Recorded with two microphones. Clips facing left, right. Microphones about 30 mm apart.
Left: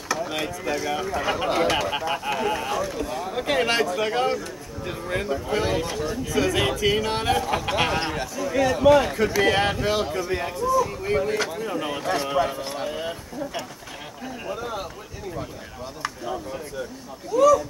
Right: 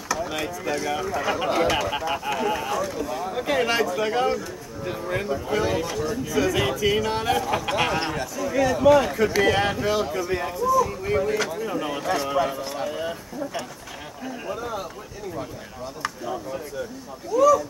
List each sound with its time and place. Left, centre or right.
0.2 s speech: centre
10.1 s speech: centre
14.2 s speech: centre
16.0 s speech: centre